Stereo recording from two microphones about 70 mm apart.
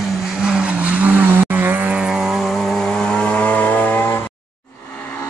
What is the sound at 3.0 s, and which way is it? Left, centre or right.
Chainsaw, centre.